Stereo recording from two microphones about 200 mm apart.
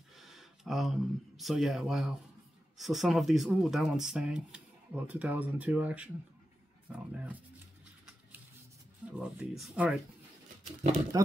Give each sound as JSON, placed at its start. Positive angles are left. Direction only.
{"t": 0.1, "sound": "speech", "side_deg": 0}
{"t": 9.5, "sound": "speech", "side_deg": 0}
{"t": 10.9, "sound": "speech", "side_deg": -15}